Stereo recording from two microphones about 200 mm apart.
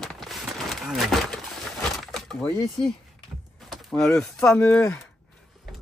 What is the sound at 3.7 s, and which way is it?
Speech, centre (ahead or behind).